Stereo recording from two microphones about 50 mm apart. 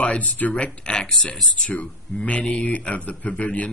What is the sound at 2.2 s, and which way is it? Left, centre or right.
Speech, left.